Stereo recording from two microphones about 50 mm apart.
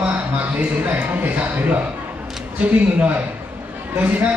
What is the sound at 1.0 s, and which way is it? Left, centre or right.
Speech, right.